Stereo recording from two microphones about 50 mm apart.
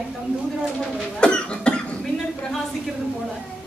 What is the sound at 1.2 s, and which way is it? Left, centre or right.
Cough, centre.